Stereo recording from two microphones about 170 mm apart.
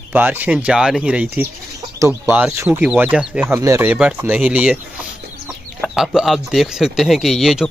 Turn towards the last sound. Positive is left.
turn(degrees=0)  # may be behind; listen again after turning